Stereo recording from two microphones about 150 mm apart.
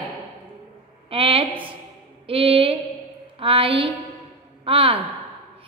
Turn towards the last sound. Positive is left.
turn(degrees=-35)  # may be behind; listen again after turning